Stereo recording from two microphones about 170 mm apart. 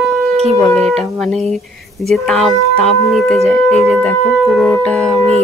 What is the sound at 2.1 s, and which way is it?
Speech, 5° left (ahead or behind).